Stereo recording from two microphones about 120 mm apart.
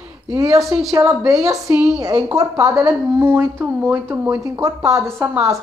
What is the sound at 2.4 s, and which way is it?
Speech, 30° right (ahead or behind).